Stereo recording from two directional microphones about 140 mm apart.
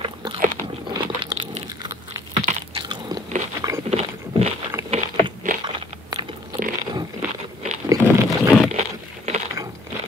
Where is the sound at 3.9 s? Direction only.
50° right (ahead or behind).